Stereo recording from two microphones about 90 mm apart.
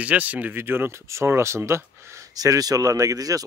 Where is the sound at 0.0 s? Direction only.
15° right (ahead or behind).